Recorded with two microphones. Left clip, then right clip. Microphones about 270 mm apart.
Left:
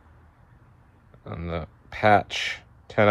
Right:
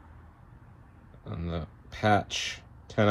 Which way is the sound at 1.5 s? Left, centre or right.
Centre.